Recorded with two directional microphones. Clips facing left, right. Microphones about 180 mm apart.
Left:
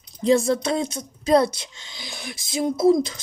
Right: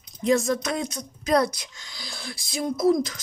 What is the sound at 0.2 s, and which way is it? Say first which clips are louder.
Speech: left 3 dB; 30° left (ahead or behind).